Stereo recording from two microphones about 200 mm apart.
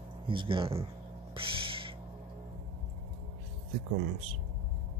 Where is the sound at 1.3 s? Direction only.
25° right (ahead or behind).